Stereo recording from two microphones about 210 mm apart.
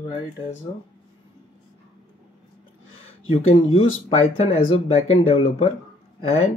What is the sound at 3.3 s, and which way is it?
Speech, 25° left (ahead or behind).